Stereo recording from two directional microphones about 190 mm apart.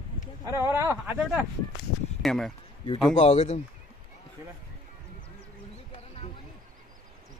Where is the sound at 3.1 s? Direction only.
30° left (ahead or behind).